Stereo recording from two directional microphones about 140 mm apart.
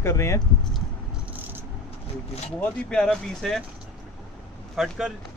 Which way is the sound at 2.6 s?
5° left (ahead or behind).